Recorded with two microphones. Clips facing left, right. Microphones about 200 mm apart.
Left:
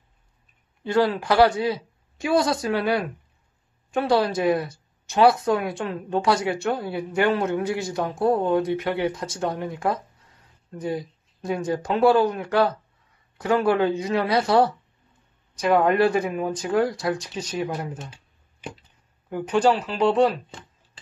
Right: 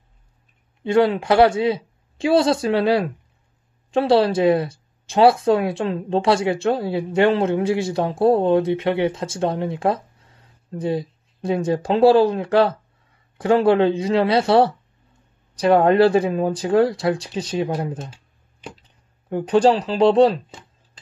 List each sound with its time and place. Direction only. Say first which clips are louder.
0.8 s speech: right 4 dB; 25° right (ahead or behind)
19.2 s speech: right 4 dB; 30° right (ahead or behind)